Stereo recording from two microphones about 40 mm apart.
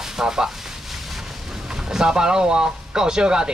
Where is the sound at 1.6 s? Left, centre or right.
Centre.